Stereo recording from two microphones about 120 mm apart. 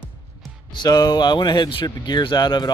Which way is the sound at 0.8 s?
30° left (ahead or behind).